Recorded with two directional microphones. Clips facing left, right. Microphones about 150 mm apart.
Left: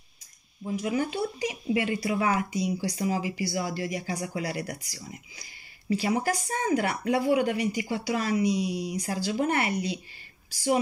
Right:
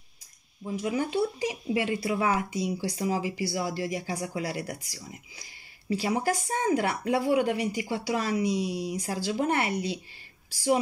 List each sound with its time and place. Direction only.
0.7 s speech: 30° right (ahead or behind)
5.9 s speech: 30° right (ahead or behind)